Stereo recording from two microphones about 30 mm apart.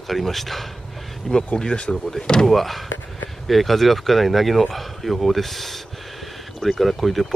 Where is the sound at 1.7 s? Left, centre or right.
Left.